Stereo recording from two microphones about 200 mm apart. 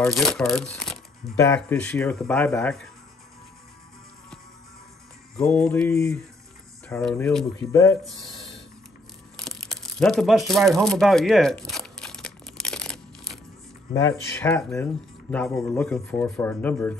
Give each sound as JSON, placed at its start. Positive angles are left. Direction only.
{"t": 0.1, "sound": "speech", "side_deg": 0}
{"t": 5.3, "sound": "music", "side_deg": 5}
{"t": 5.7, "sound": "speech", "side_deg": 5}
{"t": 9.4, "sound": "crumpling", "side_deg": 0}
{"t": 13.9, "sound": "speech", "side_deg": 15}